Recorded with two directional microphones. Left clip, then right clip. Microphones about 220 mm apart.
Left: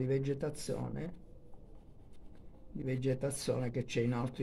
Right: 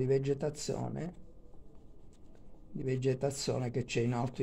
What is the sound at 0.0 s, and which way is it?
Speech, 30° right (ahead or behind).